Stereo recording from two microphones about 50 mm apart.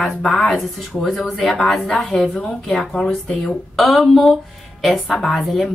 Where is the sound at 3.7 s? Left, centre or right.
Centre.